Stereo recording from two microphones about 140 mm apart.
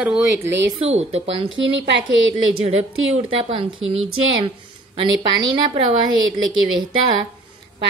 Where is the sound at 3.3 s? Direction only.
40° right (ahead or behind).